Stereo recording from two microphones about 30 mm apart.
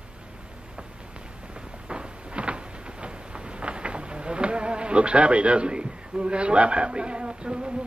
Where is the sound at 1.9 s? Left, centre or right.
Right.